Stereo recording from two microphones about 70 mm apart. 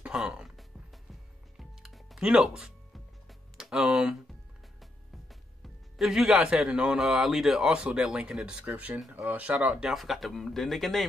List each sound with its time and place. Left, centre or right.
0.0 s music: centre
5.9 s a man's voice: centre
9.8 s speech: centre